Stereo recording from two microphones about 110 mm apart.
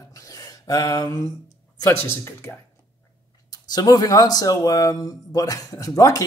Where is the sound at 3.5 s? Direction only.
35° left (ahead or behind).